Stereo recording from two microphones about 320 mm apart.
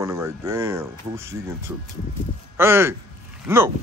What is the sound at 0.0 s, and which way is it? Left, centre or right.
Speech, centre.